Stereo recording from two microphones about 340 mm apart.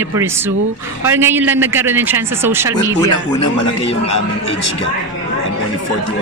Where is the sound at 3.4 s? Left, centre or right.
Left.